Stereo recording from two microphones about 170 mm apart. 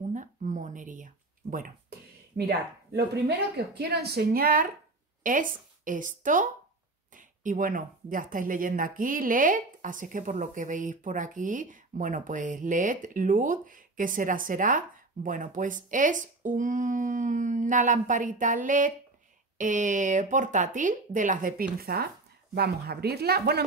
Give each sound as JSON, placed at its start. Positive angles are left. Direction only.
{"t": 0.1, "sound": "a sound", "side_deg": -50}
{"t": 2.3, "sound": "speech", "side_deg": -75}
{"t": 21.7, "sound": "speech", "side_deg": -65}